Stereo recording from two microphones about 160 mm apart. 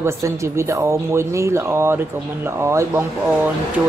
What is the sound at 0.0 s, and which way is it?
Speech, 20° right (ahead or behind).